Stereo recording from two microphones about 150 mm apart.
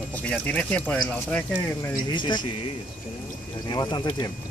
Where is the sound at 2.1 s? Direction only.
30° left (ahead or behind).